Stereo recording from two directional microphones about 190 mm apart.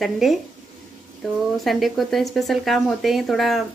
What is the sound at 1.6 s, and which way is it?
Speech, centre (ahead or behind).